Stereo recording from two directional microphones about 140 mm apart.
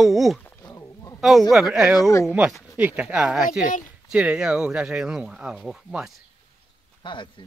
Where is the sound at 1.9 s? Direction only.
25° left (ahead or behind).